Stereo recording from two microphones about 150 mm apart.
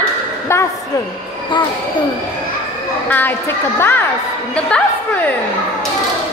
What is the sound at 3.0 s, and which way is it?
A woman's voice, 15° left (ahead or behind).